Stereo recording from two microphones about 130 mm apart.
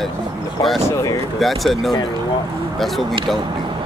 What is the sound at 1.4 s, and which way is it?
Speech, centre (ahead or behind).